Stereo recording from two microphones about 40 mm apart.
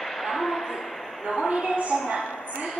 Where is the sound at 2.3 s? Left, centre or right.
Left.